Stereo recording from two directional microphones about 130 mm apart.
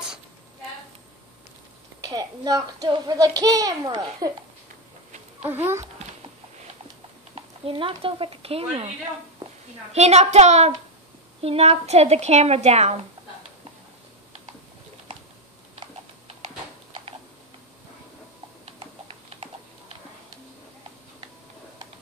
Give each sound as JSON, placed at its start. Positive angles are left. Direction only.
{"t": 2.0, "sound": "a child's voice", "side_deg": -30}
{"t": 7.6, "sound": "speech", "side_deg": -45}
{"t": 9.9, "sound": "a woman's voice", "side_deg": -55}
{"t": 18.7, "sound": "typing", "side_deg": -50}